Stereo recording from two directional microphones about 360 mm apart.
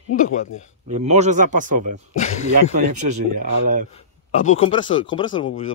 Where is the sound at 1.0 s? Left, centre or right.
Centre.